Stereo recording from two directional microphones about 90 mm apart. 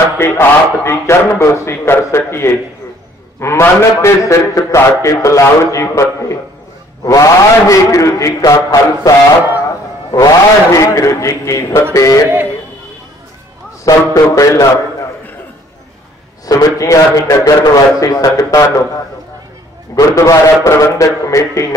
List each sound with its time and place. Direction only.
0.2 s a man's voice: 30° left (ahead or behind)
13.8 s a man's voice: 40° left (ahead or behind)
16.4 s a man's voice: 40° left (ahead or behind)
20.0 s a man's voice: 40° left (ahead or behind)